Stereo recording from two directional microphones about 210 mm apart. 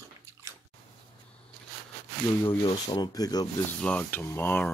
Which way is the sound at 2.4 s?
20° left (ahead or behind).